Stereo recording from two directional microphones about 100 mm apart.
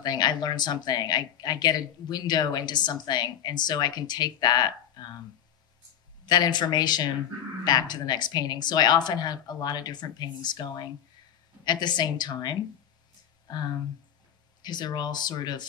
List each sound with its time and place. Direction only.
0.0 s speech: 45° left (ahead or behind)
6.2 s speech: 45° left (ahead or behind)